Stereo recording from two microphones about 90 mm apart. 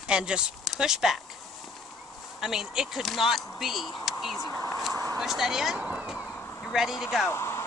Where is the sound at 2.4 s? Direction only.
5° right (ahead or behind).